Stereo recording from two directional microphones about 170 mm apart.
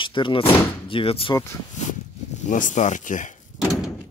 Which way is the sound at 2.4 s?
50° left (ahead or behind).